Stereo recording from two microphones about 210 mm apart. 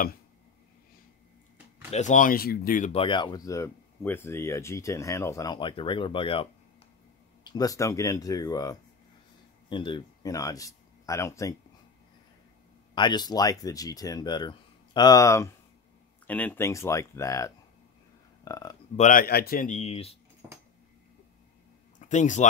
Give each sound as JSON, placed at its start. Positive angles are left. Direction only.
{"t": 1.9, "sound": "speech", "side_deg": 35}
{"t": 2.9, "sound": "speech", "side_deg": 25}
{"t": 7.4, "sound": "speech", "side_deg": 15}
{"t": 12.9, "sound": "speech", "side_deg": 20}
{"t": 18.9, "sound": "speech", "side_deg": 40}
{"t": 21.9, "sound": "speech", "side_deg": 35}